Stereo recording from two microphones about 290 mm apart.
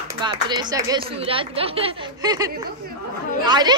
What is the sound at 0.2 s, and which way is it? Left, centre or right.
Speech, centre.